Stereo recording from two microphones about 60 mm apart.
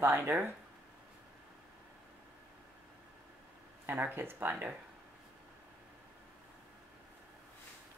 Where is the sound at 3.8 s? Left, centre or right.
Right.